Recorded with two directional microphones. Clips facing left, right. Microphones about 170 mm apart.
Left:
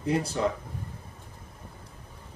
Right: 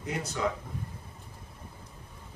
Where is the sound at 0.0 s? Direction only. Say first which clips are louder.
Left 6 dB; 30° left (ahead or behind).